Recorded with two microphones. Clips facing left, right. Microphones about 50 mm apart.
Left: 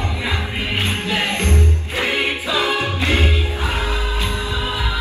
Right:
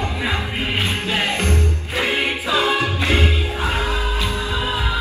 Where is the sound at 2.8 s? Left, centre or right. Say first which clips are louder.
Even; left.